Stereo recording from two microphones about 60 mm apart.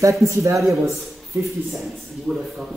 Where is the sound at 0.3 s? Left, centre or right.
Right.